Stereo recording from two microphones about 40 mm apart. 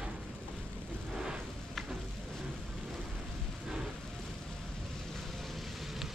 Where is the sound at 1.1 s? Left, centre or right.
Centre.